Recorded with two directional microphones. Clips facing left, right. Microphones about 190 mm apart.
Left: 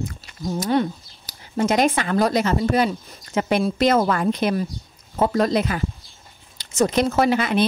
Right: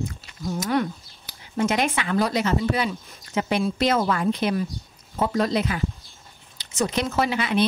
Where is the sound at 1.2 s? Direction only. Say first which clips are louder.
Left 2 dB; 40° left (ahead or behind).